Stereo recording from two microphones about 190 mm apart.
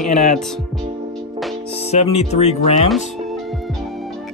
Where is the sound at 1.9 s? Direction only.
35° left (ahead or behind).